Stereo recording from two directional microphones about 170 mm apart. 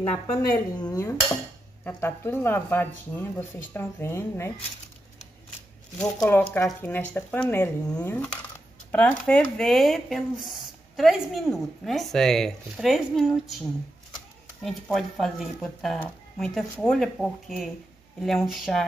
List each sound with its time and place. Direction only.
0.3 s speech: 25° left (ahead or behind)
6.0 s speech: 20° left (ahead or behind); by 13.6 s centre (ahead or behind)
14.6 s speech: centre (ahead or behind)